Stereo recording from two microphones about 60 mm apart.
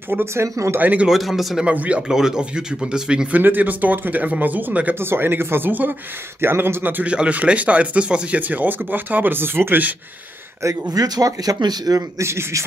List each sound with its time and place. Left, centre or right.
0.1 s speech: right
0.7 s speech: right
1.0 s a man's voice: centre
1.7 s speech: right
3.3 s speech: right
4.9 s speech: right
7.1 s speech: right
8.4 s speech: right
10.9 s speech: right
12.2 s speech: right